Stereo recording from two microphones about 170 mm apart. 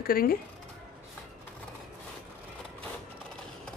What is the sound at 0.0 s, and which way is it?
Speech, 60° left (ahead or behind).